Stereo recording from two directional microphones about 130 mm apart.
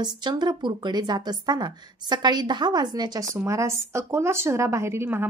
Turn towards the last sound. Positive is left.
turn(degrees=-20)  # may be behind; listen again after turning